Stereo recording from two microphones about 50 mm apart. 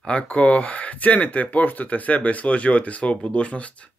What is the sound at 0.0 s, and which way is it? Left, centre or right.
Speech, left.